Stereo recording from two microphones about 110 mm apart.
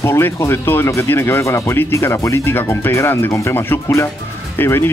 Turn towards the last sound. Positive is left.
turn(degrees=20)  # may be behind; listen again after turning